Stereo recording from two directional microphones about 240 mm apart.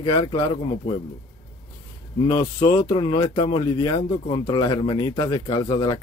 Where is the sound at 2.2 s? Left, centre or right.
Centre.